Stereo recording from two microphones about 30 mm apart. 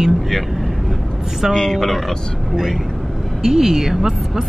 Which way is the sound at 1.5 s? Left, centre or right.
Left.